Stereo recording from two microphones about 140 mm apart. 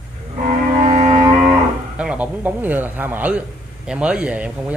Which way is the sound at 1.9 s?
10° right (ahead or behind).